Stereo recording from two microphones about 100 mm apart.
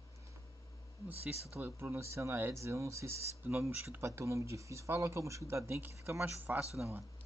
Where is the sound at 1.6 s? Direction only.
25° right (ahead or behind).